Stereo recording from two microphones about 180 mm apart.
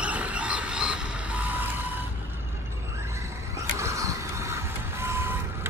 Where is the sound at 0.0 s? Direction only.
10° right (ahead or behind).